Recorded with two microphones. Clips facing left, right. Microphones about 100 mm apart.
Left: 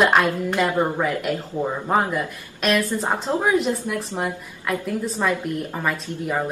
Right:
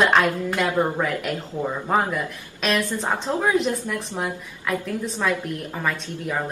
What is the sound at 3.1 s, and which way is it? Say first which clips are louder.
A woman's voice: left 1 dB; 20° left (ahead or behind).